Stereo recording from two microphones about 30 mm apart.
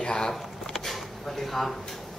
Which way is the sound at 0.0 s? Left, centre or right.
Left.